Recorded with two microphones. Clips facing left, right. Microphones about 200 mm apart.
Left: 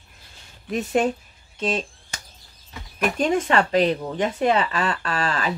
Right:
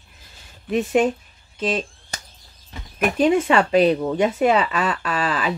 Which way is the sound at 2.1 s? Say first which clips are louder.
Right 3 dB; 35° right (ahead or behind).